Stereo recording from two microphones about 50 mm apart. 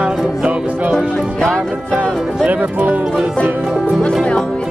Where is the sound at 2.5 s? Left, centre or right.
Right.